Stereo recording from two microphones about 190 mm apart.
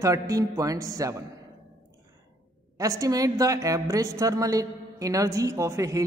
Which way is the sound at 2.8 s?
15° right (ahead or behind).